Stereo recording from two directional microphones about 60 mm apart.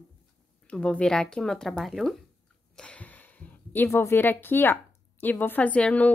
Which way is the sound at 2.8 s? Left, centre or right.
Left.